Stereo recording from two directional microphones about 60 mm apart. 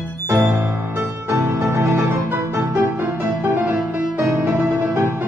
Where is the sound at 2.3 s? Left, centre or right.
Right.